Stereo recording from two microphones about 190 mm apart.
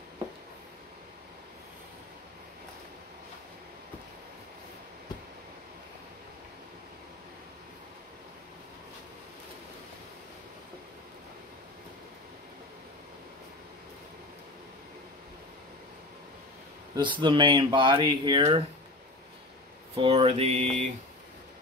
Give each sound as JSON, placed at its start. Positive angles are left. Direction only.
{"t": 16.9, "sound": "speech", "side_deg": -25}
{"t": 20.0, "sound": "mantra", "side_deg": -30}